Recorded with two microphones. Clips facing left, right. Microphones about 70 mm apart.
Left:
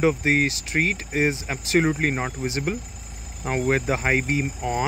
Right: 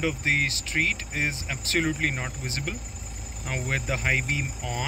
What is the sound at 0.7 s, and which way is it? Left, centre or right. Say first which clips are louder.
Speech: left 5 dB; left.